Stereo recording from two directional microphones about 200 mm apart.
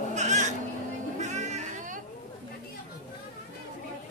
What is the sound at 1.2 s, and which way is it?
Music, 35° right (ahead or behind).